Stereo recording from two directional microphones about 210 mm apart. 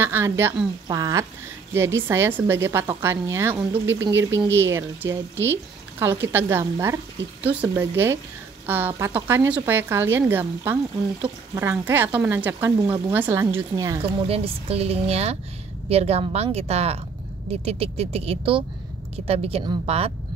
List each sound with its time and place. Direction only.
0.0 s a woman's voice: 10° right (ahead or behind)
4.1 s speech: 60° right (ahead or behind)
4.6 s a woman's voice: 10° right (ahead or behind); by 20.1 s 30° right (ahead or behind)